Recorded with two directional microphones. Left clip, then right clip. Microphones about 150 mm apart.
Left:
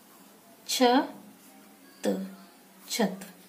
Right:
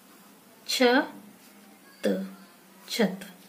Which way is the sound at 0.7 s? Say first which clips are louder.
Right 1 dB; 15° right (ahead or behind).